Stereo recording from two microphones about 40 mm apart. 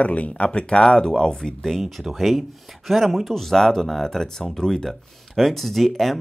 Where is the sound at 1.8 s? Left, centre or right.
Centre.